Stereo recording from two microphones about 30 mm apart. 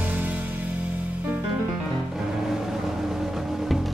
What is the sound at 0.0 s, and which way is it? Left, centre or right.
Music, right.